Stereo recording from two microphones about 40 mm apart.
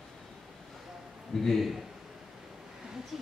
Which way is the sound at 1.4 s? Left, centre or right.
Centre.